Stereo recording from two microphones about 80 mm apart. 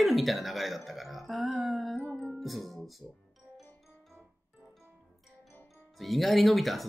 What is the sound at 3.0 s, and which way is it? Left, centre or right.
Speech, right.